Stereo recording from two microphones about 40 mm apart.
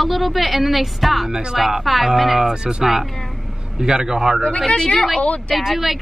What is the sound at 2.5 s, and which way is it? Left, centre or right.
Speech, centre.